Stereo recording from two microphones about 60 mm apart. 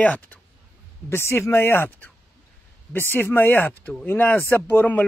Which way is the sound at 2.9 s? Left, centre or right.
Left.